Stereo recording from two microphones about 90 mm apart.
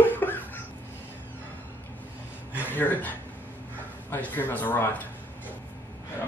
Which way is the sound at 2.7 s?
20° left (ahead or behind).